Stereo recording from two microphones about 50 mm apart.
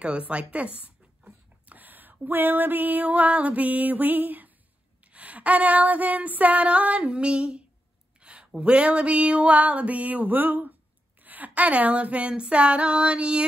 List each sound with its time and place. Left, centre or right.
0.0 s speech: right
5.0 s female singing: right